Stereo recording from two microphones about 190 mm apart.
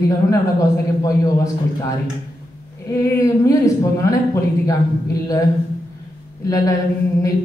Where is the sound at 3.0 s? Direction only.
15° left (ahead or behind).